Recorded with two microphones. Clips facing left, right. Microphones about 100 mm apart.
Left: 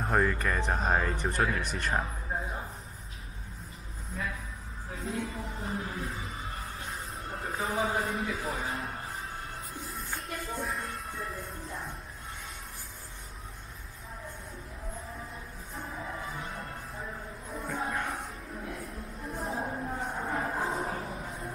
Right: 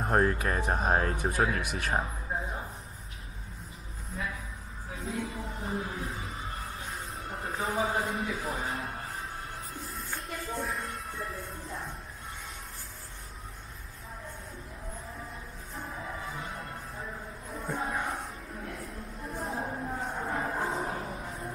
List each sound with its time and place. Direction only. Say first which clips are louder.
0.1 s speech: right 1 dB; 25° right (ahead or behind)
0.6 s speech: right 1 dB; 5° right (ahead or behind)
4.9 s music: even; centre (ahead or behind)
15.7 s music: even; centre (ahead or behind)